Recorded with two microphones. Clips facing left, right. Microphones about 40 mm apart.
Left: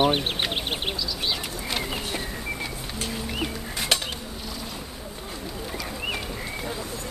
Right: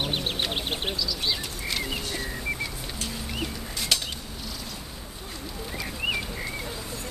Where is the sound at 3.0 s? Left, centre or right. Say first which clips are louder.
Left 4 dB; left.